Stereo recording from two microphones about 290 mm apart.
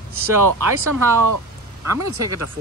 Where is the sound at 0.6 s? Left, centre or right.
Right.